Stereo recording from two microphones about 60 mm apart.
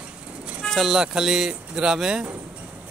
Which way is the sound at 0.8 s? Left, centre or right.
Centre.